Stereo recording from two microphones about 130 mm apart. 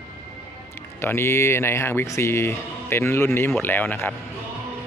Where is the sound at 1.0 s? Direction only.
20° left (ahead or behind).